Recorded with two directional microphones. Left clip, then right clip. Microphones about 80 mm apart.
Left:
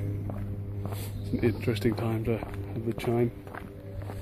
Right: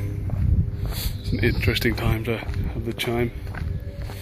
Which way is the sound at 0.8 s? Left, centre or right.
Left.